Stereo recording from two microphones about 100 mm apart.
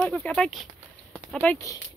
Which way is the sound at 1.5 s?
30° left (ahead or behind).